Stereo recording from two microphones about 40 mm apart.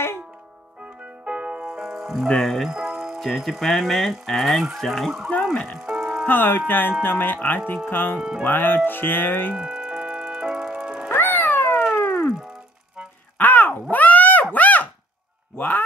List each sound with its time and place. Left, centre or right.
1.2 s music: right
1.7 s music: centre
2.3 s speech: centre
2.7 s music: centre
3.2 s speech: centre
5.9 s music: right
6.2 s speech: left
8.2 s speech: centre
8.5 s speech: left
9.5 s music: right
11.1 s cat: left
12.0 s music: left
13.4 s a sound: left